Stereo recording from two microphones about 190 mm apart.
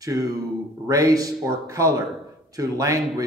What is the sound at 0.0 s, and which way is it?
Speech, 20° right (ahead or behind).